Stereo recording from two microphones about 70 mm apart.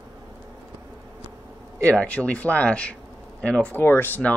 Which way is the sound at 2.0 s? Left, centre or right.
Left.